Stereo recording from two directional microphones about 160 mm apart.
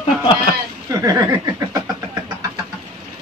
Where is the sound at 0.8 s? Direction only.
20° right (ahead or behind).